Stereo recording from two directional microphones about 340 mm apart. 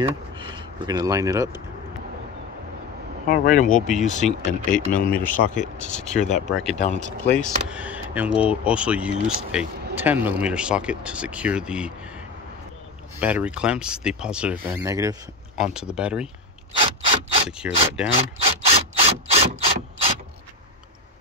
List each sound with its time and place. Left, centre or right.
0.0 s speech: centre
3.3 s speech: left
5.1 s speech: centre
5.5 s speech: left
6.5 s speech: centre
6.8 s speech: left
7.6 s speech: centre
13.2 s speech: centre
16.7 s mechanisms: centre
17.5 s speech: centre
18.4 s rub: centre
19.6 s ratchet: centre